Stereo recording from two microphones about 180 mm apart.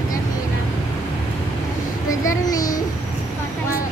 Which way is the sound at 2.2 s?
20° left (ahead or behind).